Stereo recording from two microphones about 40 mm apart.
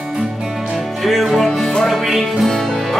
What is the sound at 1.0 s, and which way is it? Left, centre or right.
Music, centre.